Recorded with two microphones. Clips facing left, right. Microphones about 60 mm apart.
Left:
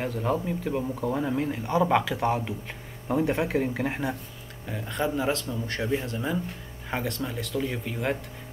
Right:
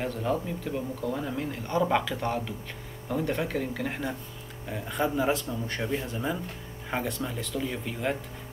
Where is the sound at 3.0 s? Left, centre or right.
Left.